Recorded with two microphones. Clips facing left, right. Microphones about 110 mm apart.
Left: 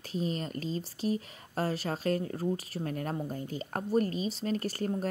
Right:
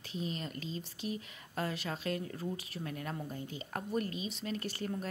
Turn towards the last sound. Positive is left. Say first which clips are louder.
# left 6 dB
turn(degrees=40)  # may be behind; listen again after turning